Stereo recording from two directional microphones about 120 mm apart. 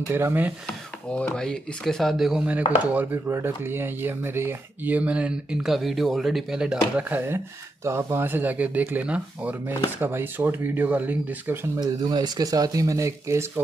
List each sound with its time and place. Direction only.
0.1 s speech: 20° right (ahead or behind)
1.1 s speech: 5° left (ahead or behind)
7.0 s speech: 15° right (ahead or behind)
11.8 s speech: 35° right (ahead or behind)